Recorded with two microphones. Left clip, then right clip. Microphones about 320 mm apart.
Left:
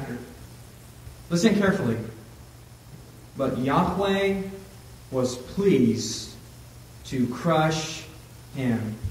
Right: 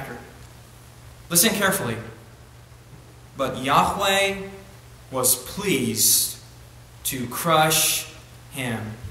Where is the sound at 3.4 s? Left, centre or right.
Right.